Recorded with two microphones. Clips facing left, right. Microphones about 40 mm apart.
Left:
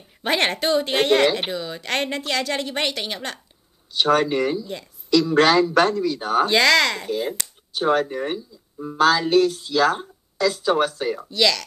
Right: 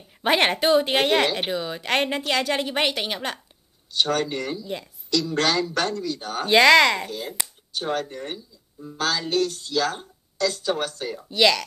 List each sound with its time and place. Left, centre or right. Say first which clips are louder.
0.2 s a woman's voice: right 1 dB; centre
3.9 s a woman's voice: left 5 dB; centre
6.4 s a woman's voice: right 3 dB; centre
7.1 s a woman's voice: left 7 dB; centre
11.2 s a woman's voice: right 3 dB; centre